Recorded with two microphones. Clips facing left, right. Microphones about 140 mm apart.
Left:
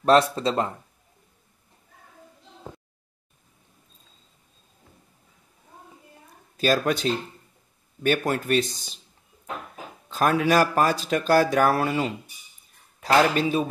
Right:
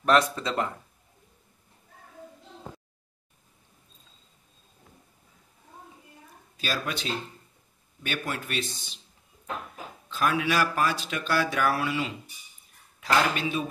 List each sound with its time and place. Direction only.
0.0 s speech: 30° left (ahead or behind)
6.5 s speech: 45° left (ahead or behind)
10.0 s speech: 45° left (ahead or behind)